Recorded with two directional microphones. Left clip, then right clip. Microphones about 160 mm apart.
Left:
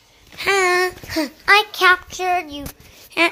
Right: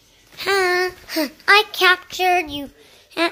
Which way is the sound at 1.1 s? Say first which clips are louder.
Even; centre (ahead or behind).